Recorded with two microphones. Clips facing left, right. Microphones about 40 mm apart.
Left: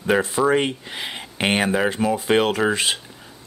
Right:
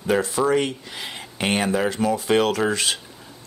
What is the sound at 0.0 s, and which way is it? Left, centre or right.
Speech, left.